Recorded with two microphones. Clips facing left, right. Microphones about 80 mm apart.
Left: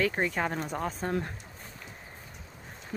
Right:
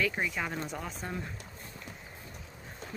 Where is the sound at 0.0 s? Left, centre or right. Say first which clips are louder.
Left 4 dB; left.